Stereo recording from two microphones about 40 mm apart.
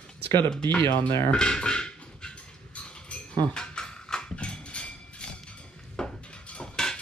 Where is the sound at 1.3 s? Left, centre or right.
Left.